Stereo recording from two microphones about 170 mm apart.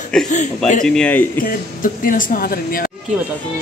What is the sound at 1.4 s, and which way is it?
Speech, 55° left (ahead or behind).